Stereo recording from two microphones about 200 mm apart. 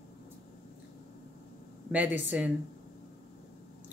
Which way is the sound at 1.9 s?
10° right (ahead or behind).